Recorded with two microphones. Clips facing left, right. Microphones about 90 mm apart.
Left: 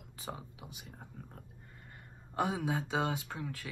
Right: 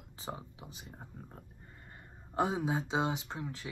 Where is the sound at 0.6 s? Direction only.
30° right (ahead or behind).